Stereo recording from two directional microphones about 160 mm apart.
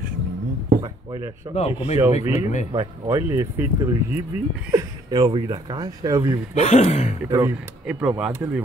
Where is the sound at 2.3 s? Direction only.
50° left (ahead or behind).